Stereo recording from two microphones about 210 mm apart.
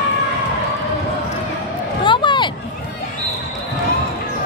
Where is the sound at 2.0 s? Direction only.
20° left (ahead or behind).